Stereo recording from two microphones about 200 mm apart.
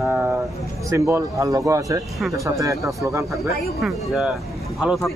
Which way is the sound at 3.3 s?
Centre (ahead or behind).